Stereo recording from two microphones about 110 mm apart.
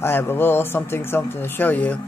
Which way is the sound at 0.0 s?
20° left (ahead or behind).